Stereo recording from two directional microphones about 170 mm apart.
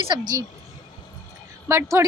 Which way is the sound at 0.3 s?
20° right (ahead or behind).